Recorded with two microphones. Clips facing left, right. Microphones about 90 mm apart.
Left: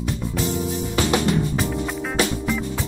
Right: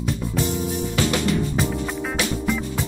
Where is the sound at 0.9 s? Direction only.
25° left (ahead or behind).